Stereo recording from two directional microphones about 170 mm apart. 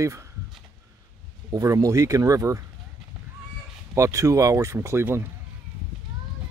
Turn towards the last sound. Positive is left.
turn(degrees=-15)  # may be behind; listen again after turning